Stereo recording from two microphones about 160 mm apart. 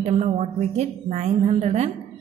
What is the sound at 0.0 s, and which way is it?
A woman's voice, 40° right (ahead or behind).